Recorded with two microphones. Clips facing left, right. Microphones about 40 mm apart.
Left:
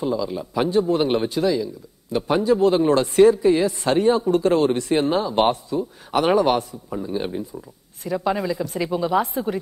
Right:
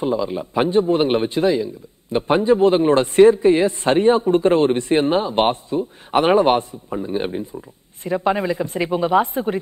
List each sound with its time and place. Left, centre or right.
0.0 s a man's voice: right